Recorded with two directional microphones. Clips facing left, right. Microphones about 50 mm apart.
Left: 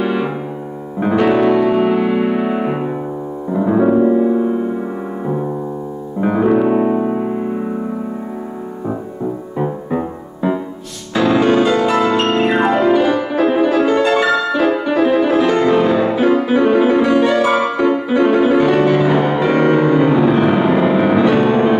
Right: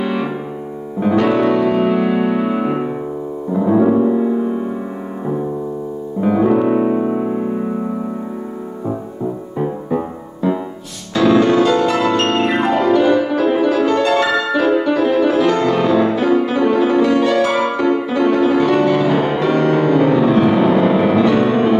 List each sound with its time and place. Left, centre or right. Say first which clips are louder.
0.0 s piano: left 2 dB; centre
0.9 s music: left 1 dB; centre
6.2 s music: even; centre
9.6 s music: even; centre
12.4 s piano: left 2 dB; centre
13.4 s music: left 1 dB; centre